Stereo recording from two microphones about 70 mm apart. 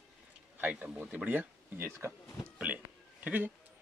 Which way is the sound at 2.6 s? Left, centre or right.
Right.